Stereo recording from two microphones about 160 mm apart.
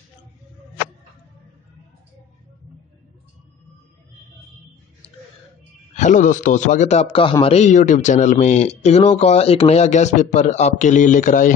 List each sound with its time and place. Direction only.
5.9 s speech: 50° left (ahead or behind)